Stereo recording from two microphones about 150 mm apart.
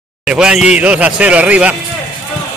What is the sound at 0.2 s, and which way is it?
A man's voice, 5° right (ahead or behind).